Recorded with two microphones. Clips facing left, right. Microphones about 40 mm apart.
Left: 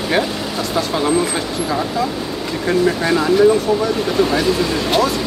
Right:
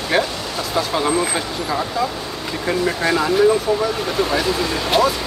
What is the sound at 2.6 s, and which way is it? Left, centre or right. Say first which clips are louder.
Speech: left 3 dB; centre.